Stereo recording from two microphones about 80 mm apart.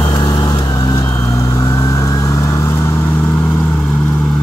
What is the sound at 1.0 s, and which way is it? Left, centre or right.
Vehicle, left.